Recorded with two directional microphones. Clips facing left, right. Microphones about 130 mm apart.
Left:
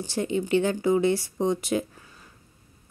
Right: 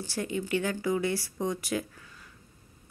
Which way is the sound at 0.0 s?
25° left (ahead or behind).